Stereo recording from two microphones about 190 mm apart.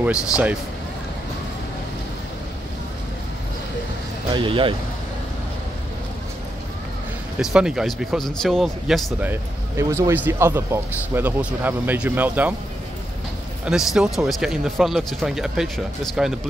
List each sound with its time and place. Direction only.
4.3 s speech: 25° right (ahead or behind)
7.3 s a man's voice: 5° right (ahead or behind)
13.7 s speech: 5° right (ahead or behind)